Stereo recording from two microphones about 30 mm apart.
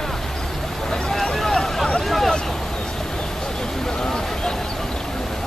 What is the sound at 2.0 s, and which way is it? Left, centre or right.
Vehicle, centre.